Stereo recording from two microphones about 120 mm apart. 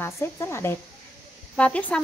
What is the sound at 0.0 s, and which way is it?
Speech, 20° left (ahead or behind).